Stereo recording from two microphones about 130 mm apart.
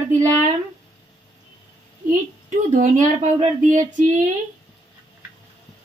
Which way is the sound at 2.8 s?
80° right.